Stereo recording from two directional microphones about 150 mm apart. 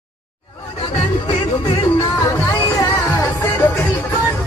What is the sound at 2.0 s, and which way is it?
Music, 20° left (ahead or behind).